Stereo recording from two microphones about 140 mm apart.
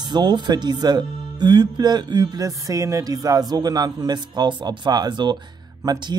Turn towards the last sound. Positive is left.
turn(degrees=-25)  # may be behind; listen again after turning